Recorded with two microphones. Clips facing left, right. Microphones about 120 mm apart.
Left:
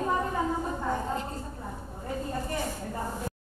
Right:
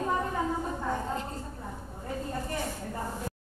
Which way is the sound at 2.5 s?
15° left (ahead or behind).